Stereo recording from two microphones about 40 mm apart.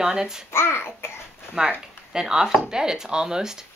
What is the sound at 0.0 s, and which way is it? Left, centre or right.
Speech, centre.